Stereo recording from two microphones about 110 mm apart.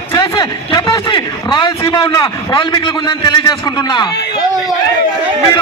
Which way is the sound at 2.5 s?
45° left (ahead or behind).